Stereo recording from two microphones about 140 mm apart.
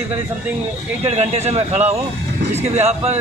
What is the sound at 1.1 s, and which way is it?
A man's voice, 50° right (ahead or behind).